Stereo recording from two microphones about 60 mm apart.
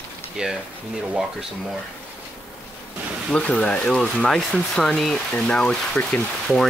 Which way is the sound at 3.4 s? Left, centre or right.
Centre.